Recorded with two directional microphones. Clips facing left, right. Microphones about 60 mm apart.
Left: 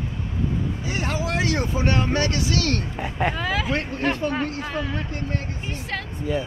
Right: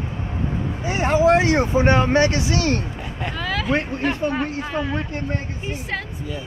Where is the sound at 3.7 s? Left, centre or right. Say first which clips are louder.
Right 2 dB; centre.